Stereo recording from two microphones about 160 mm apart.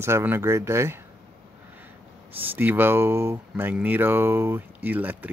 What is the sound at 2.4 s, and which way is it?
Speech, 10° right (ahead or behind).